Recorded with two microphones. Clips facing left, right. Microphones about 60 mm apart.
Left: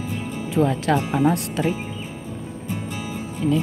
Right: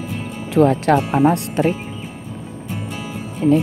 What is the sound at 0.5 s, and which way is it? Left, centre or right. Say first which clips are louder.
Speech: right 6 dB; right.